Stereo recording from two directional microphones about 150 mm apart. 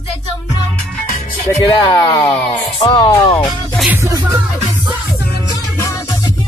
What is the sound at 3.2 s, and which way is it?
Music, 35° left (ahead or behind).